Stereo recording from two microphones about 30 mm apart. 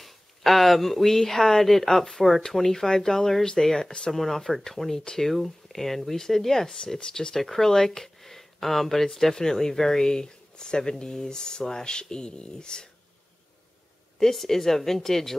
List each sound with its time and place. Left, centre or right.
0.0 s a woman's voice: centre
5.3 s a woman's voice: centre
7.0 s speech: left
14.3 s a woman's voice: centre